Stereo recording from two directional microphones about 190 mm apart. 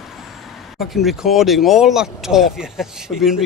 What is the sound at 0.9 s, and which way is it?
Speech, centre (ahead or behind).